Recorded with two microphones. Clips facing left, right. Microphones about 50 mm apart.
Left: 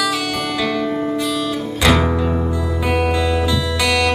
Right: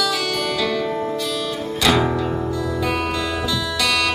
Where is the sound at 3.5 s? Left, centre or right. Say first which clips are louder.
Left 3 dB; centre.